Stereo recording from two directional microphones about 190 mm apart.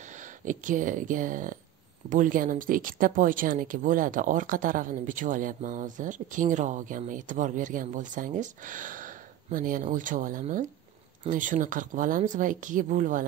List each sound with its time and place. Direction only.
0.5 s speech: 45° right (ahead or behind)